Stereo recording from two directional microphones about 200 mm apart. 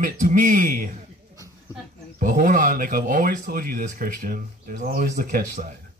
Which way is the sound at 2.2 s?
40° right (ahead or behind).